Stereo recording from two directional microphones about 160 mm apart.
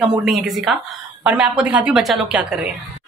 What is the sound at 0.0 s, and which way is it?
A woman's voice, centre (ahead or behind).